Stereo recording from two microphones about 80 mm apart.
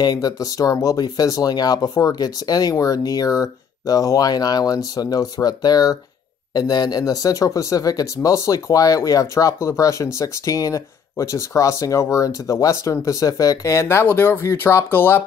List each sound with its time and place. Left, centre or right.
0.0 s speech: left